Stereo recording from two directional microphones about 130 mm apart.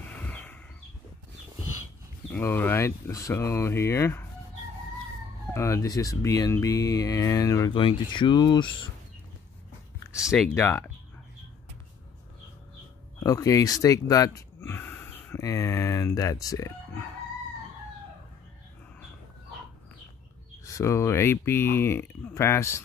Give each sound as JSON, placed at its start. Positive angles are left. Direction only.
{"t": 0.0, "sound": "a sound", "side_deg": 10}
{"t": 2.3, "sound": "speech", "side_deg": 15}
{"t": 5.5, "sound": "speech", "side_deg": 20}
{"t": 7.7, "sound": "speech", "side_deg": 40}
{"t": 10.5, "sound": "speech", "side_deg": 20}
{"t": 13.2, "sound": "speech", "side_deg": 25}
{"t": 20.6, "sound": "speech", "side_deg": 25}